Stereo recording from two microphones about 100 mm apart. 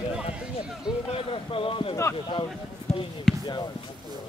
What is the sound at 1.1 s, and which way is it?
A man's voice, 65° left (ahead or behind).